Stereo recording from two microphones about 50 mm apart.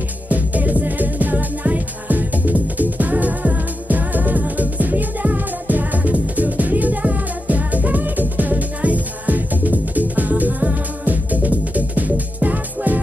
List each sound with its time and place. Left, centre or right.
0.3 s music: right